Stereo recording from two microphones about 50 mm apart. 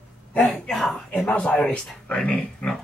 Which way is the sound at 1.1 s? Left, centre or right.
Left.